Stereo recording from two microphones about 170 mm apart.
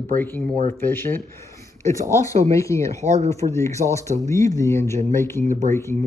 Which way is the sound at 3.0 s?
40° right (ahead or behind).